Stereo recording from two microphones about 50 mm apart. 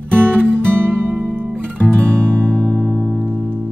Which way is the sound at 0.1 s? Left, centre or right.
Right.